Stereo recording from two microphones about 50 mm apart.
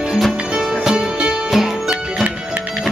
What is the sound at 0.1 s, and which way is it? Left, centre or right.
Music, centre.